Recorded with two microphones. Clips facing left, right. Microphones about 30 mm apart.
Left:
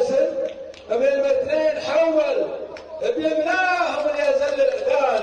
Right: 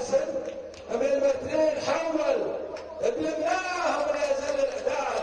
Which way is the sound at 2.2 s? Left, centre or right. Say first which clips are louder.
Left 4 dB; left.